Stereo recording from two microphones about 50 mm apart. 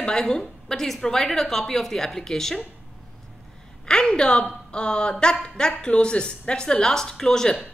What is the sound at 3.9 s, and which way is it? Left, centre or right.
A woman's voice, centre.